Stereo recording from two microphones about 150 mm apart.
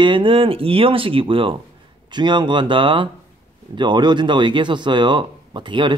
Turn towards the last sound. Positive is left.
turn(degrees=-30)  # may be behind; listen again after turning